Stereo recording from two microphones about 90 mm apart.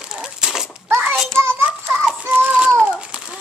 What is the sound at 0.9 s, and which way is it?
Child singing, 20° right (ahead or behind).